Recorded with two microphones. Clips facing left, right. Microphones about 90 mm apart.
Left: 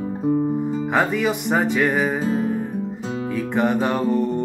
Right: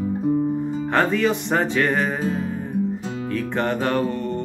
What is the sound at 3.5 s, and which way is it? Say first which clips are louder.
Music: left 2 dB; 15° left (ahead or behind).